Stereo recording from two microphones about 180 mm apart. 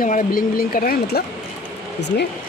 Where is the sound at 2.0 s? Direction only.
70° left (ahead or behind).